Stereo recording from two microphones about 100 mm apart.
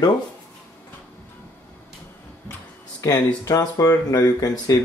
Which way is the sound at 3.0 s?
35° left (ahead or behind).